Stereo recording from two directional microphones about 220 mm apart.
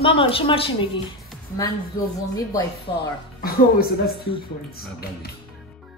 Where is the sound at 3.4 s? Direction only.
45° left (ahead or behind).